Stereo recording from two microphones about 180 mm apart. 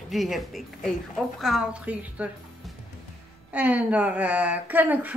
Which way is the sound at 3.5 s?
10° right (ahead or behind).